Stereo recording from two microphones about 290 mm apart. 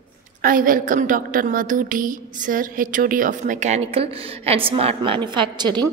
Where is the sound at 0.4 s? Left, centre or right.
Right.